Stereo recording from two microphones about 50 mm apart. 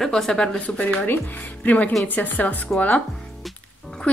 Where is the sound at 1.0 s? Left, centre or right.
Left.